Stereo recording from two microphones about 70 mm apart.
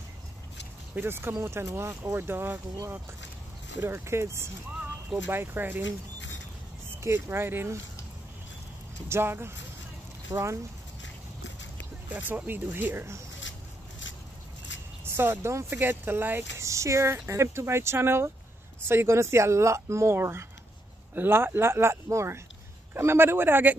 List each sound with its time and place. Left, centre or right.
0.9 s speech: right
3.8 s speech: right
7.0 s speech: right
9.1 s speech: right
10.3 s speech: right
12.1 s speech: right
15.0 s speech: right
16.5 s speech: right